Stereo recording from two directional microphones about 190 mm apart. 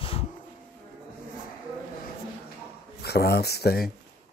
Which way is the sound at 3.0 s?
55° left (ahead or behind).